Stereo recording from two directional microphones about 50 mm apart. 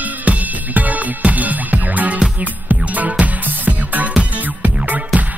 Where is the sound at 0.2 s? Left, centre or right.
Right.